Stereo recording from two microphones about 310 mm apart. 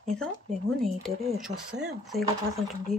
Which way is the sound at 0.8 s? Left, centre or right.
Centre.